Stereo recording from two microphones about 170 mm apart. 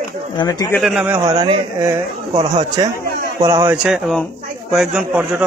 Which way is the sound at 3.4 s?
20° right (ahead or behind).